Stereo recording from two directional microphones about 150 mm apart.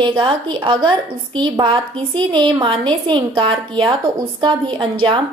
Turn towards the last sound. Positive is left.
turn(degrees=-35)  # may be behind; listen again after turning